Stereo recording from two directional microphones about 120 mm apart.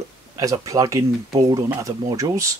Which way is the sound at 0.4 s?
30° right (ahead or behind).